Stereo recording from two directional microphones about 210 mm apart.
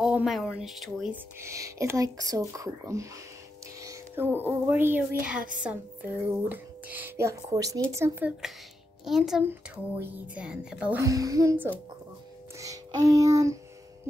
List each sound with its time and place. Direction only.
0.0 s speech: centre (ahead or behind)
1.4 s a woman's voice: 15° right (ahead or behind)
6.5 s a woman's voice: 10° right (ahead or behind)
12.5 s child singing: 15° right (ahead or behind)